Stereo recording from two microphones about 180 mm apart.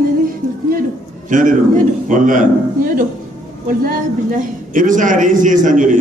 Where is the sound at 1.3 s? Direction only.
45° right (ahead or behind).